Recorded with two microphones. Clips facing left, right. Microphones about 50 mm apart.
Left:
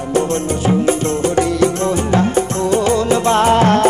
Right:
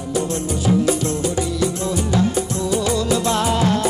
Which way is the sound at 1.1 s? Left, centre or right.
Left.